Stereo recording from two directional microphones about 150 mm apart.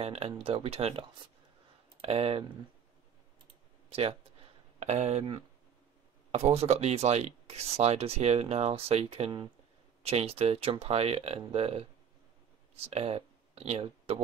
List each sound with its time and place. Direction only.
0.0 s speech: 40° right (ahead or behind)
3.9 s speech: 40° right (ahead or behind)
6.3 s speech: 45° right (ahead or behind)